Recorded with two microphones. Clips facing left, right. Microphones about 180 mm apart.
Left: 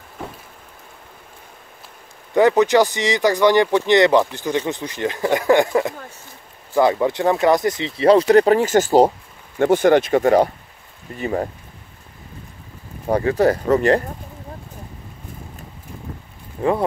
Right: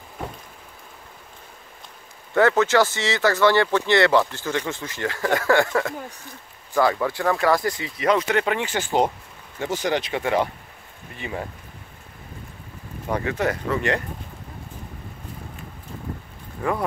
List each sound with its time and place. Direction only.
2.3 s speech: 15° left (ahead or behind); by 9.1 s 40° left (ahead or behind)
9.6 s speech: 55° left (ahead or behind)
13.1 s speech: 35° left (ahead or behind)
16.6 s speech: 25° left (ahead or behind)